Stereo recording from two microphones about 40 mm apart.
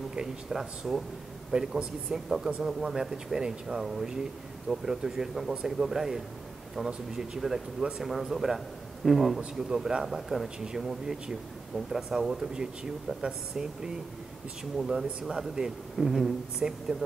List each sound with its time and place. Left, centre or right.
0.1 s speech: centre
2.0 s speech: centre
16.6 s speech: centre